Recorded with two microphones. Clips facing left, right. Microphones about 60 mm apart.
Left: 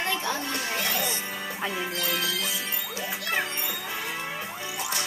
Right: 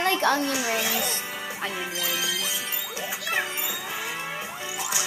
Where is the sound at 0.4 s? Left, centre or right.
Centre.